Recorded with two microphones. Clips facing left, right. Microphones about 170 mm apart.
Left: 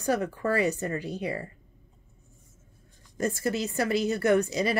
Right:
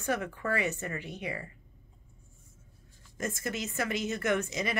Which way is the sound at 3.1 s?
35° left (ahead or behind).